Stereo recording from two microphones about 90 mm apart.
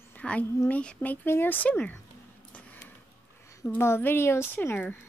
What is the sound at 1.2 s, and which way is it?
Speech, 25° left (ahead or behind).